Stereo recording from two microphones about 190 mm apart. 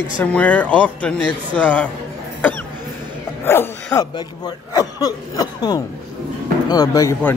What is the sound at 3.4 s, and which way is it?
A man's voice, 10° left (ahead or behind).